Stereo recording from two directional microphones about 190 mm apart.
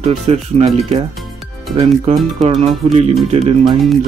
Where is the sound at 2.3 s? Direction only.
35° right (ahead or behind).